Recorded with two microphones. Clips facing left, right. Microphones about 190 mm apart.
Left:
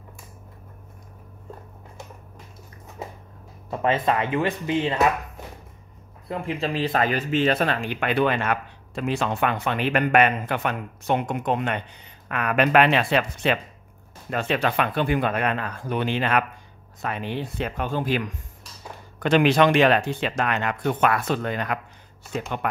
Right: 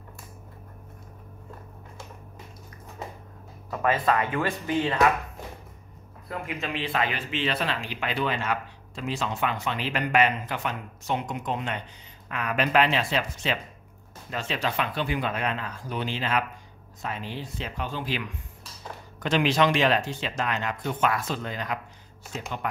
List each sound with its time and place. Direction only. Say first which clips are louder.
3.7 s speech: left 2 dB; 25° left (ahead or behind)
6.2 s speech: left 6 dB; 25° left (ahead or behind); by 22.7 s 60° left (ahead or behind)